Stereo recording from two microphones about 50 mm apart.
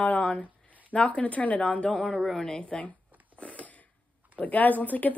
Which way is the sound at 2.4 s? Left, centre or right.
Centre.